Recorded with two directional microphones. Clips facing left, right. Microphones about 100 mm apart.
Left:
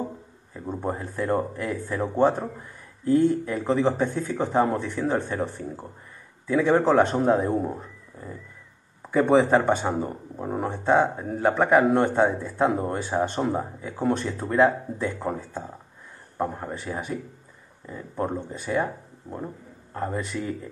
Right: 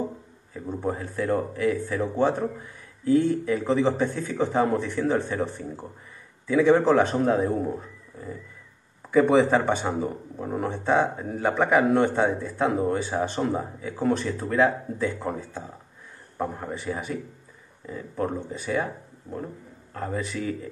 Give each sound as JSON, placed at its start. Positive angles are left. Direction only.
{"t": 0.8, "sound": "speech", "side_deg": 5}
{"t": 3.1, "sound": "a man's voice", "side_deg": 0}
{"t": 9.1, "sound": "a man's voice", "side_deg": 0}
{"t": 10.3, "sound": "a man's voice", "side_deg": 10}
{"t": 18.5, "sound": "speech", "side_deg": 5}